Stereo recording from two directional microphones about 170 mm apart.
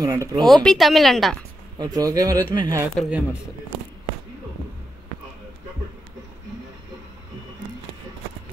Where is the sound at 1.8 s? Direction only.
20° right (ahead or behind).